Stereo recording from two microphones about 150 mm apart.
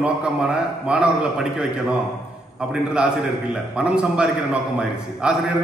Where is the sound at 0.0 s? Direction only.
5° right (ahead or behind).